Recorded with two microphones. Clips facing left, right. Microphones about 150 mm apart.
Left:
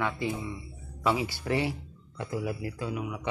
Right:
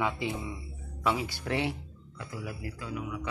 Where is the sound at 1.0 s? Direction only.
10° left (ahead or behind).